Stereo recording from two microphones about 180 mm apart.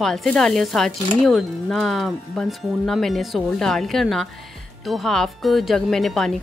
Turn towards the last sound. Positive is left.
turn(degrees=0)  # may be behind; listen again after turning